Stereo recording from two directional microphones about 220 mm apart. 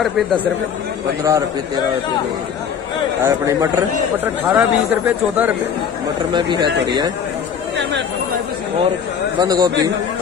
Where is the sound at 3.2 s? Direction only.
15° right (ahead or behind).